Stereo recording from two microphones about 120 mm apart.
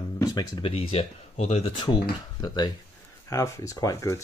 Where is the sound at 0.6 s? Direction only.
50° left (ahead or behind).